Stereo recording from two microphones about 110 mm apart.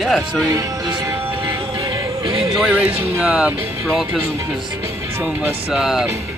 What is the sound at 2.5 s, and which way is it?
Speech, 10° right (ahead or behind).